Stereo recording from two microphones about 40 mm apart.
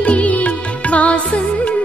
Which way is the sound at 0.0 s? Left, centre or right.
Left.